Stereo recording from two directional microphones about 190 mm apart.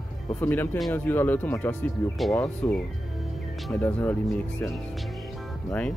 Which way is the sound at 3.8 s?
10° left (ahead or behind).